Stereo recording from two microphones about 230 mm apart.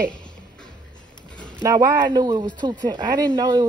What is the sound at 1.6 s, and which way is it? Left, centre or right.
Speech, centre.